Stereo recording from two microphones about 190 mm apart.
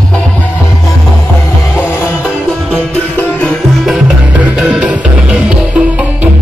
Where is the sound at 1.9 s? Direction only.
15° left (ahead or behind); by 6.0 s 5° right (ahead or behind).